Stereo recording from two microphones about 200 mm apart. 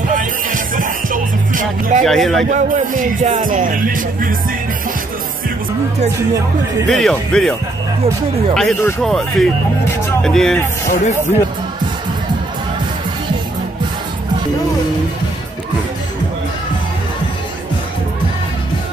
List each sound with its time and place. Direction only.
0.1 s music: 40° right (ahead or behind)
2.0 s speech: centre (ahead or behind)
2.5 s speech: 40° right (ahead or behind)
6.9 s speech: centre (ahead or behind)
8.5 s speech: centre (ahead or behind)